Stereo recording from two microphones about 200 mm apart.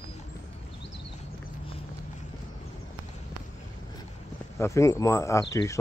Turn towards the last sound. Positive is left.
turn(degrees=15)  # may be behind; listen again after turning